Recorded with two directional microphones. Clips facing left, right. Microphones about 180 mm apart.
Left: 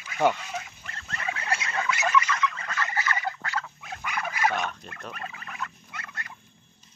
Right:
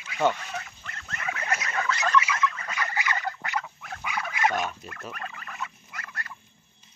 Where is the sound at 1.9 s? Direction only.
10° left (ahead or behind).